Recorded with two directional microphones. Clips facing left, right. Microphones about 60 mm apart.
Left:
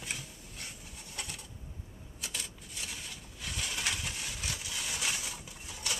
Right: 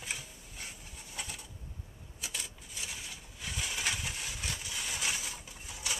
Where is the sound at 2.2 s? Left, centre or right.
Centre.